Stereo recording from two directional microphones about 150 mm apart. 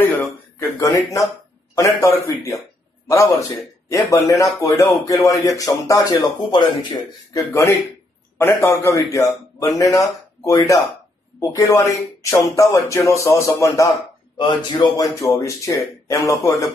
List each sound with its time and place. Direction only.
0.0 s a man's voice: 15° left (ahead or behind)